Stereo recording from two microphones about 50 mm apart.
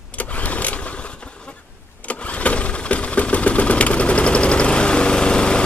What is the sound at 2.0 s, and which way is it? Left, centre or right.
Engine, left.